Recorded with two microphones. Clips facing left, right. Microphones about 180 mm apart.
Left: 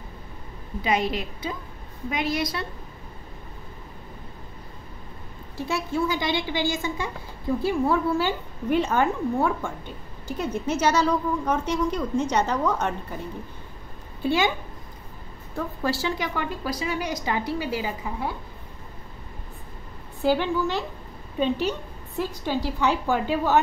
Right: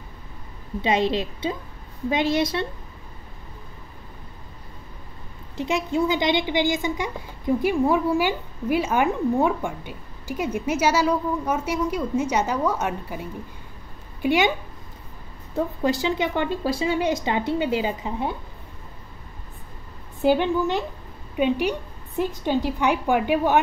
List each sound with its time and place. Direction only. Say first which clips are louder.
0.8 s speech: right 3 dB; 25° right (ahead or behind)
5.6 s a woman's voice: right 3 dB; 20° right (ahead or behind)
15.5 s speech: right 4 dB; 20° right (ahead or behind)
20.2 s a woman's voice: right 3 dB; 20° right (ahead or behind)